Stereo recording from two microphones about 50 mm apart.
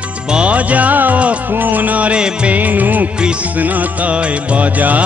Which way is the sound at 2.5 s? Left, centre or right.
Right.